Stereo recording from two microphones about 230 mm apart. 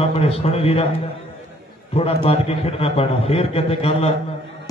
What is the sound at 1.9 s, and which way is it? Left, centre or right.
A man's voice, left.